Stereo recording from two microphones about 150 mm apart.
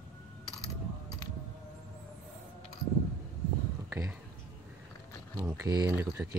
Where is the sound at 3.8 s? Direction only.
15° right (ahead or behind).